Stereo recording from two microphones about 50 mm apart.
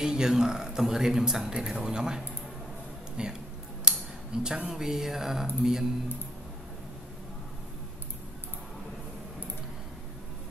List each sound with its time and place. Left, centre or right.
0.0 s speech: centre